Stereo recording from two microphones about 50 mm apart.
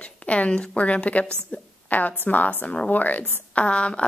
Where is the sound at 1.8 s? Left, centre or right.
Left.